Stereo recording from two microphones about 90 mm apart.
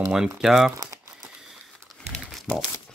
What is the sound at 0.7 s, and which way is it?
Crumpling, 40° right (ahead or behind).